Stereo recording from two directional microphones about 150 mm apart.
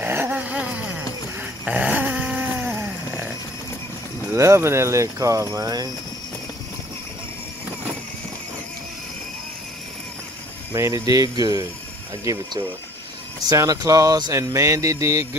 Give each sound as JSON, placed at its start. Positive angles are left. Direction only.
{"t": 0.0, "sound": "a sound", "side_deg": -15}
{"t": 4.3, "sound": "speech", "side_deg": -20}
{"t": 10.7, "sound": "speech", "side_deg": -20}
{"t": 13.5, "sound": "speech", "side_deg": -25}